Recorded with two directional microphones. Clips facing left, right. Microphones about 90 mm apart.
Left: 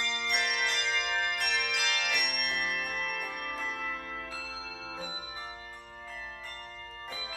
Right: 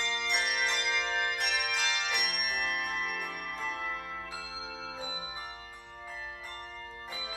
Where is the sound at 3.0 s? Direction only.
Centre (ahead or behind).